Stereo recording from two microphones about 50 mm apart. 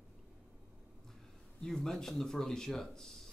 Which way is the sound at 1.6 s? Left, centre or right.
Centre.